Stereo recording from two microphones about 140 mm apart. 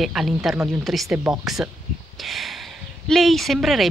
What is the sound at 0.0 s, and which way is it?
A woman's voice, 5° right (ahead or behind).